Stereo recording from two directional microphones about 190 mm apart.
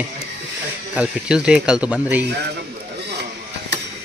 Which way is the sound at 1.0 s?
5° right (ahead or behind).